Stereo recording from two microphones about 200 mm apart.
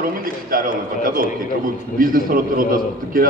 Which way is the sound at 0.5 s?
45° right (ahead or behind).